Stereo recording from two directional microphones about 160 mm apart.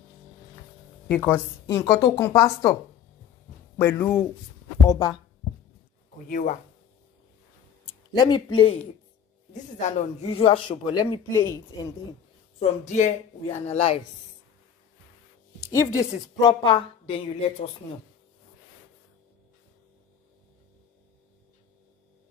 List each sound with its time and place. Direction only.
1.0 s speech: 10° left (ahead or behind)
1.7 s a woman's voice: 20° left (ahead or behind)
6.2 s speech: 55° left (ahead or behind)
8.1 s a woman's voice: 25° left (ahead or behind)
9.5 s speech: 50° left (ahead or behind); by 12.6 s 25° left (ahead or behind)
12.9 s speech: 45° left (ahead or behind)
15.7 s a woman's voice: 20° left (ahead or behind)